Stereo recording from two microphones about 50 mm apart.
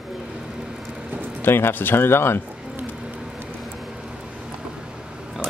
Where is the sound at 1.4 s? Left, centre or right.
Left.